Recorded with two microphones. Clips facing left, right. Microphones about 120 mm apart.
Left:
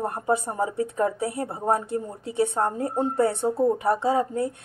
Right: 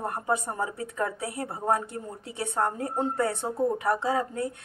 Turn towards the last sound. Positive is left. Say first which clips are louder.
# left 4 dB
turn(degrees=30)  # may be behind; listen again after turning